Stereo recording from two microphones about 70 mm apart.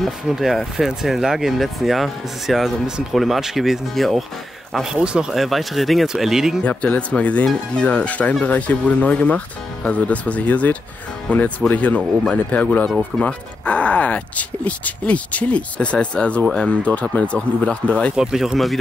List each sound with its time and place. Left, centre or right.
0.3 s speech: centre
4.9 s speech: centre
5.3 s speech: centre
6.6 s speech: left
18.1 s speech: centre